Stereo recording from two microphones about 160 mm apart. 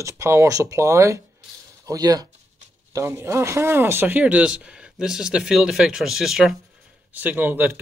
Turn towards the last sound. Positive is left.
turn(degrees=-10)  # may be behind; listen again after turning